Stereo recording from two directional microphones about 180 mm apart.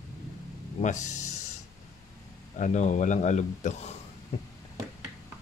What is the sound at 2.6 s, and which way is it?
Speech, 40° left (ahead or behind).